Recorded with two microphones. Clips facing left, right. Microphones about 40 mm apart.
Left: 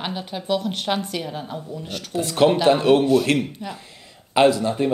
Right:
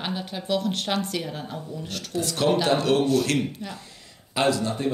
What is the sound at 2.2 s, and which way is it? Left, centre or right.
Speech, left.